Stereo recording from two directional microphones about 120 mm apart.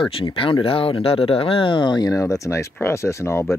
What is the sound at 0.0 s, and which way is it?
Speech, 50° left (ahead or behind).